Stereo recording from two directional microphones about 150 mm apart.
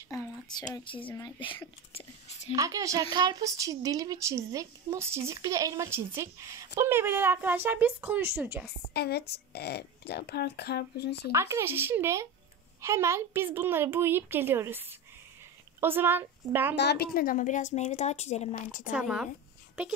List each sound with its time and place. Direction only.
0.1 s a sound: 25° left (ahead or behind)
0.7 s a woman's voice: 35° left (ahead or behind)
2.5 s a woman's voice: 20° right (ahead or behind)
8.9 s speech: 90° left
11.3 s a woman's voice: 15° right (ahead or behind)
16.8 s a woman's voice: 90° left; by 18.9 s 55° left (ahead or behind)
18.9 s a woman's voice: 5° right (ahead or behind)